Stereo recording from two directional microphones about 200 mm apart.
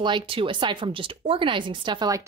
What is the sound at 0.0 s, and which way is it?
Speech, 25° right (ahead or behind).